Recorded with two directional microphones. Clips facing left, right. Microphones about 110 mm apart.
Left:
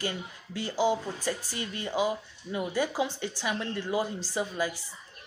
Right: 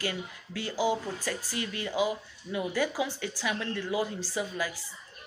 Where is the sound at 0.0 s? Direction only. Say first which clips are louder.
Even; 25° left (ahead or behind).